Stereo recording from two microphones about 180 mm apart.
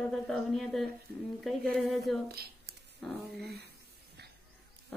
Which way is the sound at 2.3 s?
60° right (ahead or behind).